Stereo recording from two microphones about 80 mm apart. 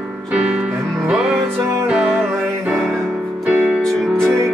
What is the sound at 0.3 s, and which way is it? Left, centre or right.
Music, centre.